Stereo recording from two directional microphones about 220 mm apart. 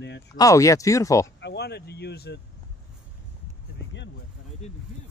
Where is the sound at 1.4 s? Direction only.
50° left (ahead or behind).